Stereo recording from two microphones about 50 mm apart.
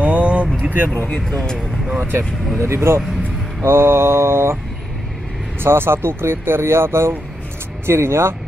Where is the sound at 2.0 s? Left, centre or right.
Right.